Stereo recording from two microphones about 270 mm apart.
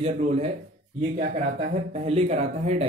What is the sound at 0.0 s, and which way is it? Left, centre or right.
Speech, right.